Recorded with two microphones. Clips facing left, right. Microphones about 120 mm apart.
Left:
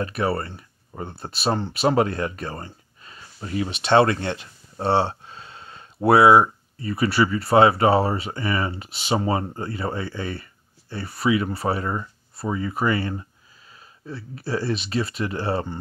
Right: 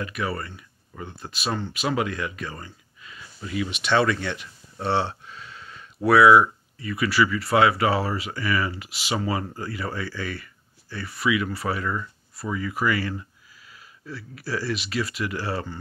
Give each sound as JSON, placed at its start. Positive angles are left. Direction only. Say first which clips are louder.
{"t": 0.0, "sound": "speech", "louder": "left 5 dB", "side_deg": 35}